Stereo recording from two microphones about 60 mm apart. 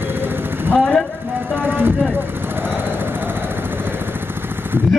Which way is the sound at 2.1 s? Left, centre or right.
Right.